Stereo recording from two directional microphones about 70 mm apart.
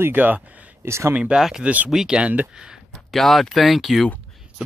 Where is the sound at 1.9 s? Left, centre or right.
Centre.